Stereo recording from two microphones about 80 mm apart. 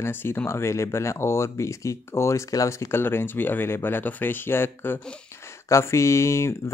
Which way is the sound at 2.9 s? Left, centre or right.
Left.